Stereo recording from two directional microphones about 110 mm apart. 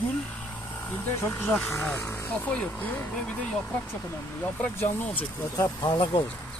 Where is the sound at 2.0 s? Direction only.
25° left (ahead or behind).